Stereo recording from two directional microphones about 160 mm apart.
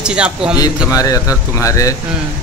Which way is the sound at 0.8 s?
20° left (ahead or behind).